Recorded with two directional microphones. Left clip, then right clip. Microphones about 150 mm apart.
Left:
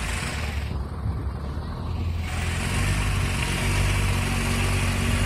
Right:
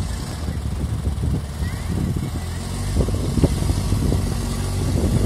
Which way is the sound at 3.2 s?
25° right (ahead or behind).